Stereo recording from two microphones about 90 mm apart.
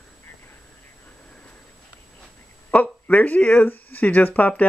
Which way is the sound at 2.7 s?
15° left (ahead or behind).